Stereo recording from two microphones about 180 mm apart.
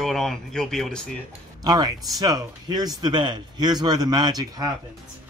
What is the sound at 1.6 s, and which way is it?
Speech, 20° right (ahead or behind).